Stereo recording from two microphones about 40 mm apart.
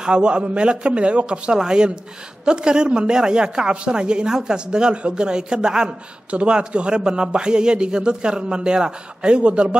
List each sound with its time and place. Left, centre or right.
0.0 s a woman's voice: right
1.5 s a woman's voice: centre